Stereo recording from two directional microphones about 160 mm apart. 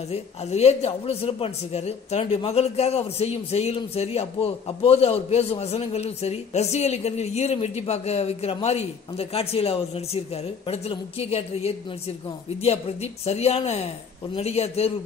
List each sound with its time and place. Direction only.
0.1 s speech: 40° left (ahead or behind)